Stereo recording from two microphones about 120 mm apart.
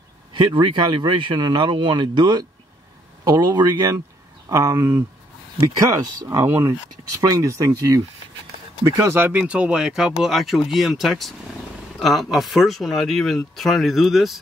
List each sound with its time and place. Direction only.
0.3 s speech: 40° right (ahead or behind); by 14.4 s centre (ahead or behind)